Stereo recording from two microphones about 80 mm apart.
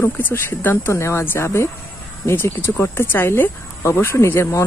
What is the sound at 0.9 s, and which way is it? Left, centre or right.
Speech, left.